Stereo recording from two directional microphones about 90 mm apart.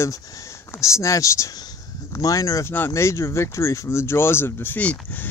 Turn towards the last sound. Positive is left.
turn(degrees=20)  # may be behind; listen again after turning